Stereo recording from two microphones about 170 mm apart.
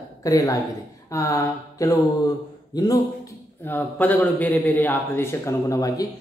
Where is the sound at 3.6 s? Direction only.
10° left (ahead or behind).